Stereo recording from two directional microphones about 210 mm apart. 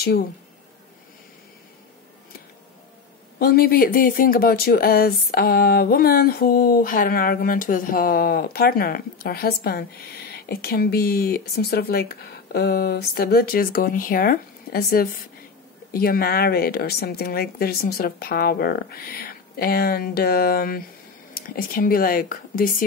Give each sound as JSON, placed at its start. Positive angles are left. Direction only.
{"t": 3.3, "sound": "speech", "side_deg": 45}